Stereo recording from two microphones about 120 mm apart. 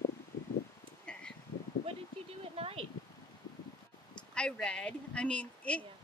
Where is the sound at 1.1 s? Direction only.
10° left (ahead or behind).